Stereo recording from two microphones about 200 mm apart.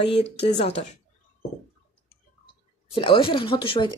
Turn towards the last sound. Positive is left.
turn(degrees=25)  # may be behind; listen again after turning